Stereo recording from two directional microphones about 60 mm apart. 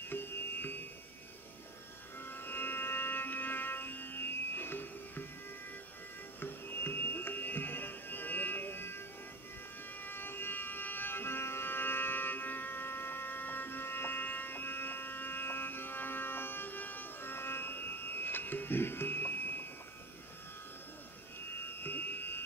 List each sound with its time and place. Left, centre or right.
0.1 s music: left
2.1 s music: left
6.4 s music: left
10.0 s music: left
21.6 s a sound: left